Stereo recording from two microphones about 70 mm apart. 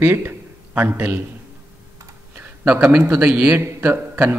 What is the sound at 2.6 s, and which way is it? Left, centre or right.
Speech, centre.